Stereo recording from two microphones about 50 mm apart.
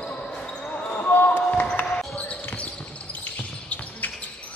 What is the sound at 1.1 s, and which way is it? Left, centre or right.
Basketball bounce, left.